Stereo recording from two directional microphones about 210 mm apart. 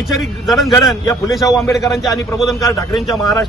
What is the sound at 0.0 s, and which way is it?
A man's voice, centre (ahead or behind).